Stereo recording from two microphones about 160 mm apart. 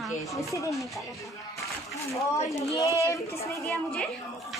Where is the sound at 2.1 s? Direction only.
20° left (ahead or behind).